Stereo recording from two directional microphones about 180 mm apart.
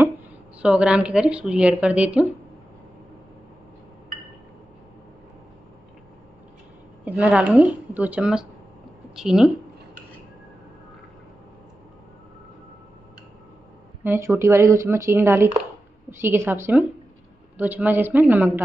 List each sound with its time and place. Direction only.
0.6 s speech: 5° right (ahead or behind)
7.1 s a woman's voice: 5° right (ahead or behind)
14.0 s speech: 15° right (ahead or behind)